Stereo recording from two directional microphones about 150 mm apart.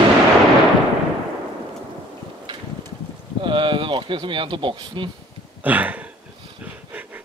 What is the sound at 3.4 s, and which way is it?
Speech, 35° right (ahead or behind).